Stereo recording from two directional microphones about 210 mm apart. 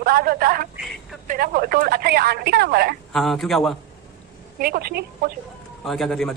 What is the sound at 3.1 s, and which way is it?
Speech, centre (ahead or behind).